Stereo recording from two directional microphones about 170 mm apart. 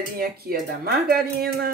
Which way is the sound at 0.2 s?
65° right (ahead or behind).